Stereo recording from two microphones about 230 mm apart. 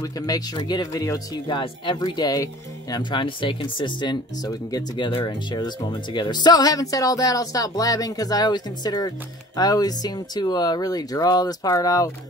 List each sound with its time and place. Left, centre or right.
0.0 s speech: centre